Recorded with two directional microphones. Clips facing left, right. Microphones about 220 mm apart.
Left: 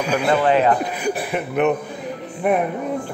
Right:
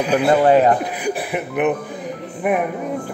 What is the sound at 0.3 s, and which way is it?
Speech, 40° right (ahead or behind).